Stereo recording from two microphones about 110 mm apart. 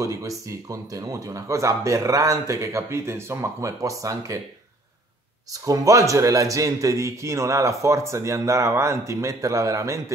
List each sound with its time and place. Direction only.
0.0 s speech: 30° right (ahead or behind)
5.5 s speech: 30° right (ahead or behind)